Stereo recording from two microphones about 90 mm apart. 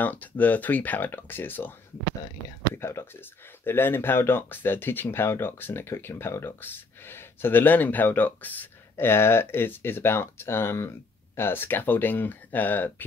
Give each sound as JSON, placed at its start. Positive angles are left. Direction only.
{"t": 0.0, "sound": "speech", "side_deg": 20}
{"t": 2.7, "sound": "speech", "side_deg": 30}